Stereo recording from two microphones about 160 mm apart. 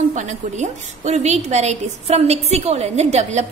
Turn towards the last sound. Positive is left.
turn(degrees=-45)  # may be behind; listen again after turning